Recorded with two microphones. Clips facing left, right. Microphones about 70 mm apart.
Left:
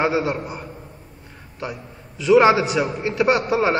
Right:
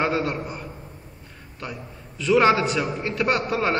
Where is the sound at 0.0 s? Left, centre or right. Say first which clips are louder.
Left 3 dB; centre.